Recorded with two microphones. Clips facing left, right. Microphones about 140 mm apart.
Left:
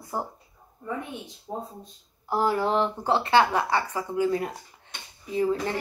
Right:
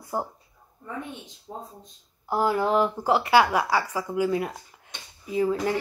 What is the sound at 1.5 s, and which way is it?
Speech, 35° left (ahead or behind).